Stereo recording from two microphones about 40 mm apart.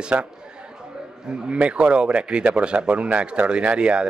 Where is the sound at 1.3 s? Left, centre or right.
Right.